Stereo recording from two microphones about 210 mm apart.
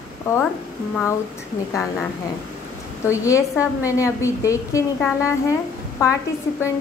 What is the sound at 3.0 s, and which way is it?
A woman's voice, 15° left (ahead or behind).